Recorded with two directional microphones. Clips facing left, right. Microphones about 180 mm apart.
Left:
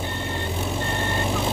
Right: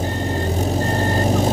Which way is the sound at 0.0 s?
40° right (ahead or behind).